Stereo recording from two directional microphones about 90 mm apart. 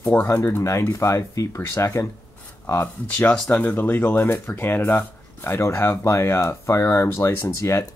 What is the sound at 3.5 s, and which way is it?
Speech, 20° left (ahead or behind).